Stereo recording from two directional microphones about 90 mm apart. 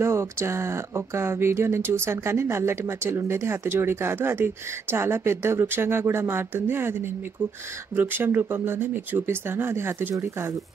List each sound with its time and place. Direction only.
0.0 s speech: 30° right (ahead or behind)